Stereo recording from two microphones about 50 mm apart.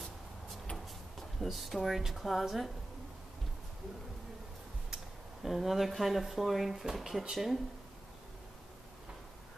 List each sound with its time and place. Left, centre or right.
1.4 s speech: centre
4.9 s speech: centre